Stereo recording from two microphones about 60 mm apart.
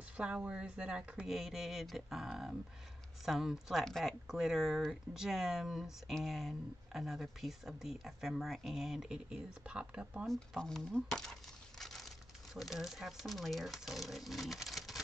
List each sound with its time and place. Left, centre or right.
0.2 s speech: centre
3.8 s speech: centre
4.3 s speech: centre
10.2 s speech: centre
11.8 s a sound: centre
12.5 s speech: centre